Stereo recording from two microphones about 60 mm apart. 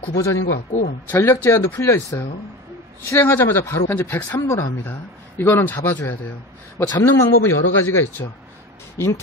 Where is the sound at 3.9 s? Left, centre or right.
Left.